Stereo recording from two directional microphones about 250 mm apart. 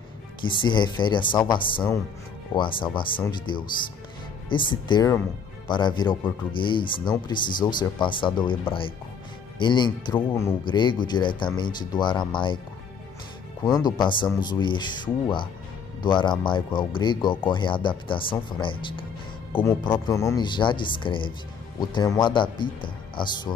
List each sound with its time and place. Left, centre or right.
0.4 s speech: centre
13.7 s speech: centre